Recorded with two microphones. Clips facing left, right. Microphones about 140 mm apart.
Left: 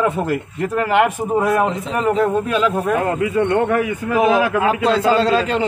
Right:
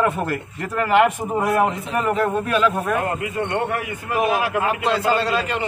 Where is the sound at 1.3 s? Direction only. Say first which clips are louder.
Left 3 dB; 25° left (ahead or behind).